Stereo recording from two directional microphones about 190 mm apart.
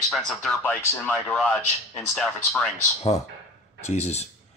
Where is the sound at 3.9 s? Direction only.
35° left (ahead or behind).